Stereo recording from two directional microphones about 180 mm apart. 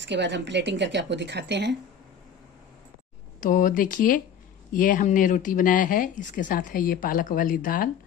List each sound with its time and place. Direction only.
0.0 s speech: 80° right
3.3 s speech: 50° left (ahead or behind)